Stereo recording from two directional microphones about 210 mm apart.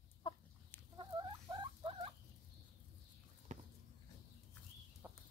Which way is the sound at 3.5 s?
35° right (ahead or behind).